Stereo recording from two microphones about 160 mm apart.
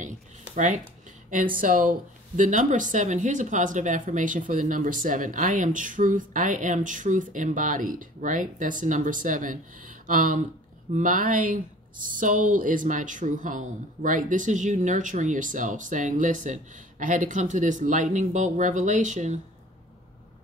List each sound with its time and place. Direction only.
1.6 s speech: 60° right (ahead or behind)